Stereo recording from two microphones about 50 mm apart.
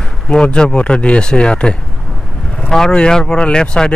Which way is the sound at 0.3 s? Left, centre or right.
Centre.